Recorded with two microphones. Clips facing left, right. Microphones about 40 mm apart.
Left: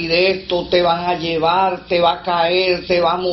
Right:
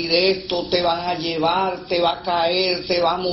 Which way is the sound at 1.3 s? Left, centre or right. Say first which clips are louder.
Left 5 dB; centre.